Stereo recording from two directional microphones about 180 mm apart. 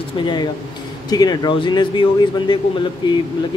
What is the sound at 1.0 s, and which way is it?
Speech, 20° left (ahead or behind).